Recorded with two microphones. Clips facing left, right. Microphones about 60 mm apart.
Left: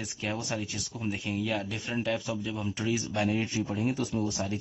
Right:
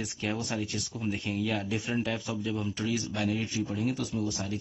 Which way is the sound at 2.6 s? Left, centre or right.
Centre.